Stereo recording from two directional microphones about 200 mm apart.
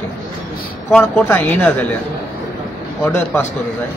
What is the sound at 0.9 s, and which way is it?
Speech, 10° left (ahead or behind).